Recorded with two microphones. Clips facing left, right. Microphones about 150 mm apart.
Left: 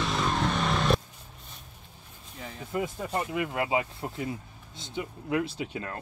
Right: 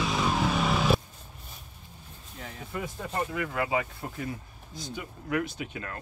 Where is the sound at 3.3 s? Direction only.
20° left (ahead or behind).